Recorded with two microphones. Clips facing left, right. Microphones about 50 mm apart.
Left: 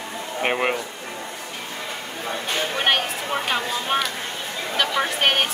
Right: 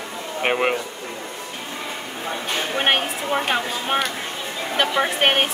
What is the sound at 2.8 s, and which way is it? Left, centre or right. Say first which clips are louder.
A woman's voice: right 2 dB; right.